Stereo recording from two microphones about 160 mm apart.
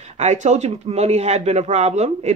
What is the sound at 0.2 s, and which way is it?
Speech, 45° right (ahead or behind).